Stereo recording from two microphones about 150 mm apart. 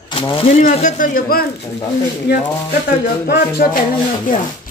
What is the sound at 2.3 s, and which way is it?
Music, 90° left.